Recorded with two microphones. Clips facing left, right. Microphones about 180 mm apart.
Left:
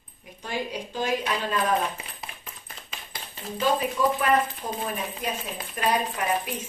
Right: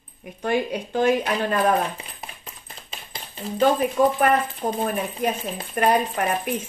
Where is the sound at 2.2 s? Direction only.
25° right (ahead or behind).